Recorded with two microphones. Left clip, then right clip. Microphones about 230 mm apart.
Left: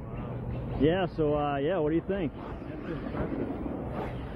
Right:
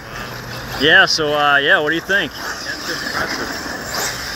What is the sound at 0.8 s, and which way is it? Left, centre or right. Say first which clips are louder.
Speech: right 15 dB; centre.